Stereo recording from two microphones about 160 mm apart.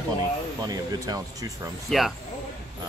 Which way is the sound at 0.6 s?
20° right (ahead or behind).